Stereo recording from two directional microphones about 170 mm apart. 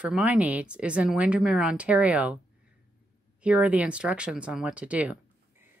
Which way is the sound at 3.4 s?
10° right (ahead or behind).